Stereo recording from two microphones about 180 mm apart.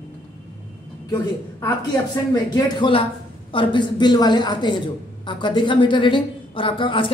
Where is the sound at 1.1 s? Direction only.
20° left (ahead or behind).